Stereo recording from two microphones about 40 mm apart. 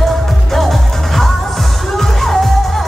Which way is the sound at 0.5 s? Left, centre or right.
Centre.